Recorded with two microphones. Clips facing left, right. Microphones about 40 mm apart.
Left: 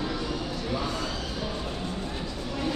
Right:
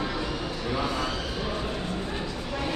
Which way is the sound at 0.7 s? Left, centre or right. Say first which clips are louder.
Right 3 dB; centre.